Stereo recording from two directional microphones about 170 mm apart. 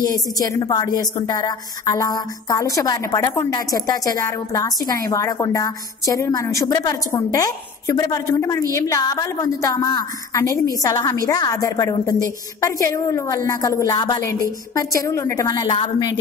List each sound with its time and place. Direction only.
0.0 s a woman's voice: 20° left (ahead or behind)